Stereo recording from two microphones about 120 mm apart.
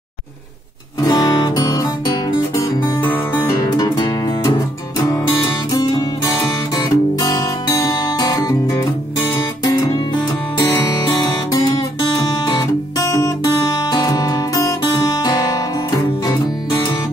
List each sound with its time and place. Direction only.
1.0 s music: 35° left (ahead or behind)
8.2 s guitar: 30° left (ahead or behind)
10.8 s music: 35° left (ahead or behind)
12.4 s guitar: 30° left (ahead or behind)
13.7 s music: 35° left (ahead or behind)